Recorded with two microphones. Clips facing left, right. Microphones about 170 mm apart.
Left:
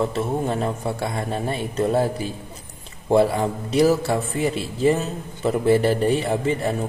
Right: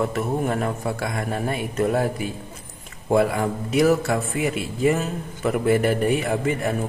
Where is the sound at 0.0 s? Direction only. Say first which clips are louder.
Even; 25° left (ahead or behind).